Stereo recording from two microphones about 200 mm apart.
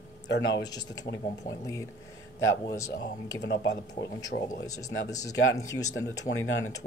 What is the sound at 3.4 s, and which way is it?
Speech, 55° left (ahead or behind).